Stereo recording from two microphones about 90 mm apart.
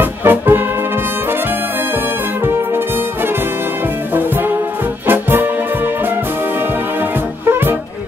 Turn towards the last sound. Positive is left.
turn(degrees=-25)  # may be behind; listen again after turning